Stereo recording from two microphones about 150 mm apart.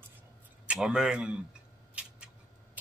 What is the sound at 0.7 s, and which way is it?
Speech, 5° right (ahead or behind).